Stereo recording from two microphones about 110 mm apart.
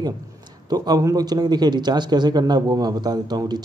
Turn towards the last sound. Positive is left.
turn(degrees=-40)  # may be behind; listen again after turning